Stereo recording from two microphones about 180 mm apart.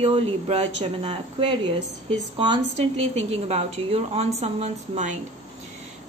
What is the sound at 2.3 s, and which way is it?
A woman's voice, 25° right (ahead or behind).